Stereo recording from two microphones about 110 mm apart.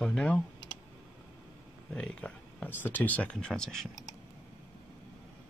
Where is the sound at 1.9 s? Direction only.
10° left (ahead or behind).